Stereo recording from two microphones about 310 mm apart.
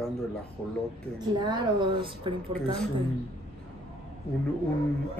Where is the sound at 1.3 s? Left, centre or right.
Centre.